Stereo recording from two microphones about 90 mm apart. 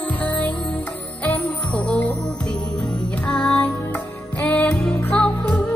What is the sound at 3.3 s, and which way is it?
Music, 10° left (ahead or behind).